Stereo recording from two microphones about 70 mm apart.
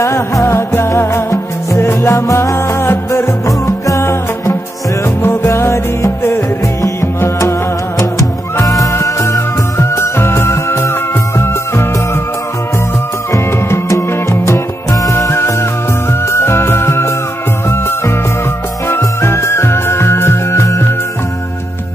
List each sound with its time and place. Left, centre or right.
0.0 s music: left
3.4 s music: left
13.3 s music: left